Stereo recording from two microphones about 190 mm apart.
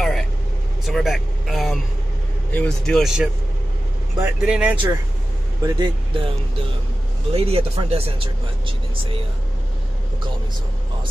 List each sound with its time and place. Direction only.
0.0 s vehicle: centre (ahead or behind)
0.8 s speech: centre (ahead or behind)
5.6 s speech: 20° right (ahead or behind)
7.3 s speech: 30° right (ahead or behind)